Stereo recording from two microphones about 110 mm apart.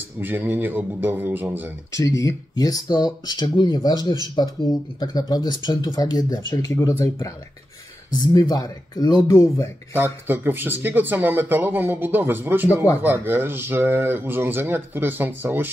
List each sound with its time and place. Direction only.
0.2 s speech: 15° right (ahead or behind)
2.0 s speech: 30° left (ahead or behind)
9.9 s speech: 20° right (ahead or behind)